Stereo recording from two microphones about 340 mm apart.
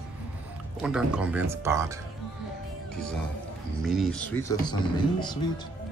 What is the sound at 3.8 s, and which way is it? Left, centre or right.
Speech, centre.